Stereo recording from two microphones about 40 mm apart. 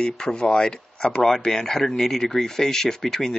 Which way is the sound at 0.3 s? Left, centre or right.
Left.